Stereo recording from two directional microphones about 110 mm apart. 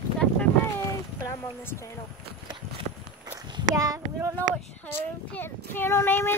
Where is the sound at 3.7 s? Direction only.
30° right (ahead or behind).